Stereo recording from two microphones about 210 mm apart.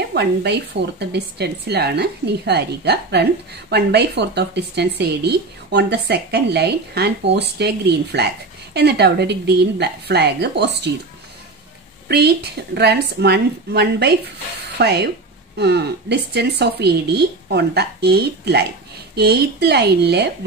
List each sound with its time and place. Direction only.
0.1 s speech: 50° right (ahead or behind)
12.1 s speech: 50° right (ahead or behind)